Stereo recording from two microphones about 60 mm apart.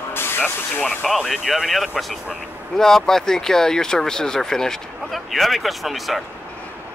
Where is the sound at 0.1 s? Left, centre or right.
Left.